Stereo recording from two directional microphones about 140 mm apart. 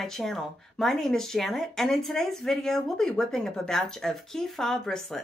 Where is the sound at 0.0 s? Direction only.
5° left (ahead or behind).